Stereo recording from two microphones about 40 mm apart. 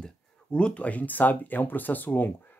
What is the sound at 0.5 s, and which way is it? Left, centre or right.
Speech, left.